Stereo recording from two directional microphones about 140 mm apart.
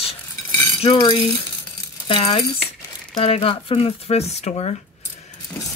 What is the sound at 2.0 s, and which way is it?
Speech, 40° left (ahead or behind).